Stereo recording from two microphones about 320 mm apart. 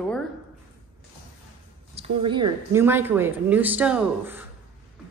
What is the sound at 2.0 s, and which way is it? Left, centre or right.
A woman's voice, centre.